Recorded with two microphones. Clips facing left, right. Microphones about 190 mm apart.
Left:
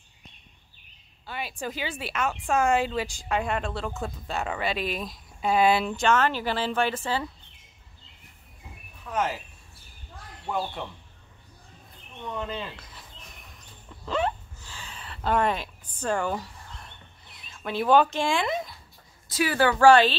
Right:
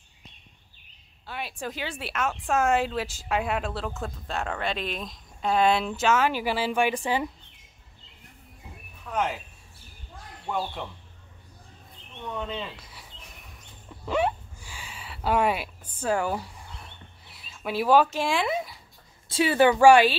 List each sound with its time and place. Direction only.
1.2 s speech: centre (ahead or behind)
9.0 s speech: centre (ahead or behind)
10.4 s speech: centre (ahead or behind)
12.2 s speech: centre (ahead or behind)
12.7 s a sound: 10° right (ahead or behind)
19.2 s speech: 25° right (ahead or behind); by 20.2 s 10° right (ahead or behind)